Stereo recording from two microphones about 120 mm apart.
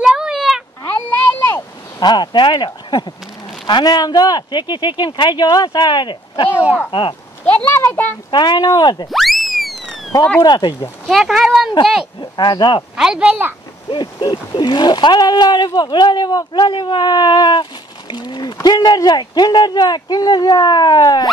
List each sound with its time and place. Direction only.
0.0 s a sound: 5° right (ahead or behind)
2.0 s speech: 35° left (ahead or behind)
6.5 s speech: 10° right (ahead or behind)
6.9 s speech: 45° left (ahead or behind)
7.6 s a child's voice: 20° left (ahead or behind)
8.3 s speech: 40° left (ahead or behind)
9.1 s a sound: centre (ahead or behind)
10.4 s speech: 35° left (ahead or behind)
11.1 s speech: centre (ahead or behind)
12.2 s speech: 40° left (ahead or behind)
12.9 s speech: 5° right (ahead or behind)
13.8 s speech: 45° left (ahead or behind)